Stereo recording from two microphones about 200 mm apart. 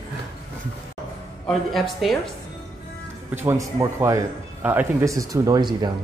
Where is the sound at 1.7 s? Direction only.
Centre (ahead or behind).